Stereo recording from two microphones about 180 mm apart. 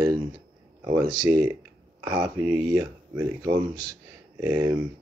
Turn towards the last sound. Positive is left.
turn(degrees=-10)  # may be behind; listen again after turning